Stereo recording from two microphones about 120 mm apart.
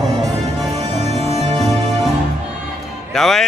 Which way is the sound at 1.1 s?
65° right (ahead or behind).